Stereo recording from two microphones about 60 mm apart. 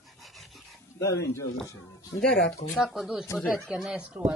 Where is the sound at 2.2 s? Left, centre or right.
Centre.